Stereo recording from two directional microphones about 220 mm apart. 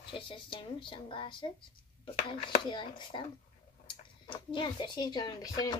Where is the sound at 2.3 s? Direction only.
20° left (ahead or behind).